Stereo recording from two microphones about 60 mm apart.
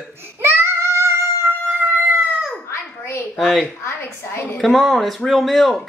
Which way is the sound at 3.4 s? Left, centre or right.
Centre.